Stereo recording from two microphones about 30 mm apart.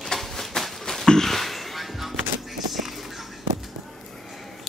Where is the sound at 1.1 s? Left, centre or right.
Centre.